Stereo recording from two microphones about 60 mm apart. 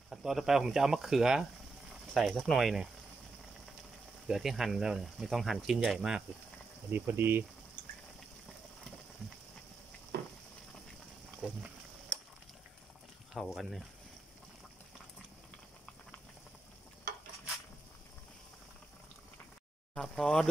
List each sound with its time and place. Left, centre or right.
0.1 s speech: centre
4.3 s speech: centre
6.9 s speech: right
11.4 s a sound: centre
13.3 s speech: centre
19.9 s a sound: centre